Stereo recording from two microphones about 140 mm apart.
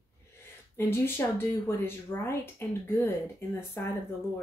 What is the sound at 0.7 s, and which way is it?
A woman's voice, 15° left (ahead or behind).